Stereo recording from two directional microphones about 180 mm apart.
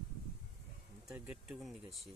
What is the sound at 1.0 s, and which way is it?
Speech, 10° right (ahead or behind).